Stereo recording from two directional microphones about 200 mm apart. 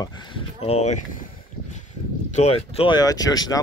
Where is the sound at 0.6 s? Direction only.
30° left (ahead or behind).